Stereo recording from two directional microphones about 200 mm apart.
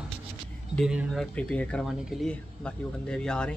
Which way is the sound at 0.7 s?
Centre (ahead or behind).